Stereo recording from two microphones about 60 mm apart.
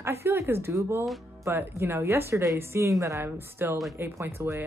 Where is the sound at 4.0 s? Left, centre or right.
Right.